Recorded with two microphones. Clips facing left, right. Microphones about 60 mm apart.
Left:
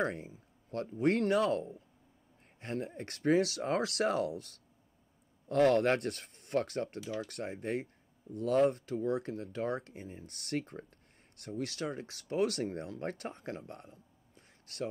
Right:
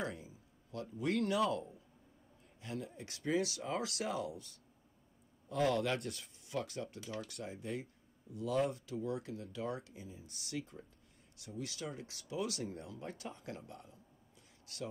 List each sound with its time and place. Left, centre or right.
0.0 s speech: left